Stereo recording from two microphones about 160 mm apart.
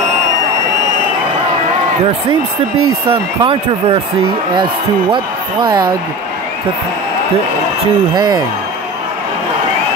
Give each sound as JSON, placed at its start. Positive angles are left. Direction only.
{"t": 3.1, "sound": "speech", "side_deg": -35}
{"t": 5.1, "sound": "speech", "side_deg": -30}
{"t": 8.1, "sound": "speech", "side_deg": -25}